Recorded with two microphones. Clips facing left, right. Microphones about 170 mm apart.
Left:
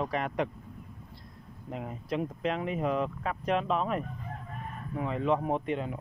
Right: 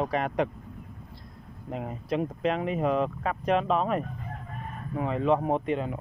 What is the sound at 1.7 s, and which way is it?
Speech, 80° right.